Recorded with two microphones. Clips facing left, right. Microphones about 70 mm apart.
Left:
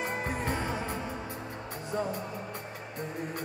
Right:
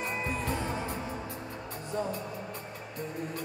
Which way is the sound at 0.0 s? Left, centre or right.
Left.